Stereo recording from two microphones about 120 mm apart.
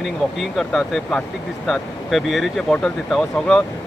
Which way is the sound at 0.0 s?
Centre (ahead or behind).